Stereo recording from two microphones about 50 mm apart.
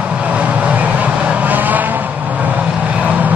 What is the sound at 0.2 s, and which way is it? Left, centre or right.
Vehicle, right.